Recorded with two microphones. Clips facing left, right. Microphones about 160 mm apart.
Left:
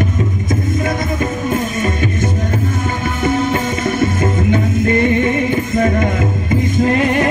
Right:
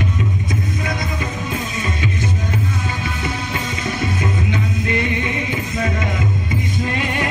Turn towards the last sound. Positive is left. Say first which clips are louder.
# left 9 dB
turn(degrees=40)  # may be behind; listen again after turning